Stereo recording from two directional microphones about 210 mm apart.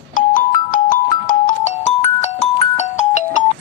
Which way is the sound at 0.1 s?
40° left (ahead or behind).